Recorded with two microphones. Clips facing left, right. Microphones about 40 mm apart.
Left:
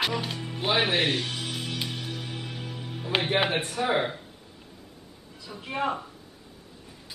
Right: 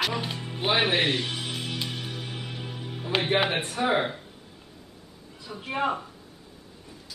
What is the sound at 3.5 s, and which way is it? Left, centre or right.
Speech, centre.